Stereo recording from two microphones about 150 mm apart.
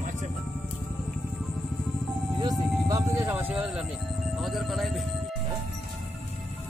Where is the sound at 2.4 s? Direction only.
25° right (ahead or behind); by 5.1 s centre (ahead or behind).